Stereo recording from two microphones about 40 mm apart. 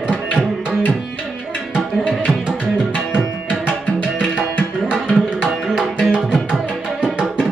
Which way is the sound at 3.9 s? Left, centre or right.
Left.